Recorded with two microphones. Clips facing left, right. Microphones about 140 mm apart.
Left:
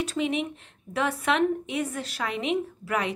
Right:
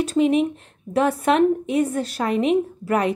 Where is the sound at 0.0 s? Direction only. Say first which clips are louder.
Right 9 dB; 45° right (ahead or behind).